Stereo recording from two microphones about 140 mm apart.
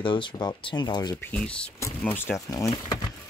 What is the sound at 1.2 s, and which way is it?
Speech, 10° left (ahead or behind).